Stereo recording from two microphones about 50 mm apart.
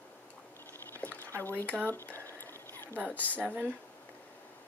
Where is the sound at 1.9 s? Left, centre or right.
Left.